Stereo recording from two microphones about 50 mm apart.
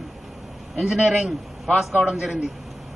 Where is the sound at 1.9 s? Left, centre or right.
Right.